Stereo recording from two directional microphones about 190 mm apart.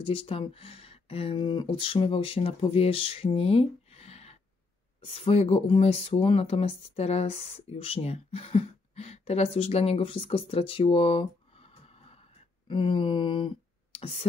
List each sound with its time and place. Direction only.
0.0 s speech: 30° left (ahead or behind)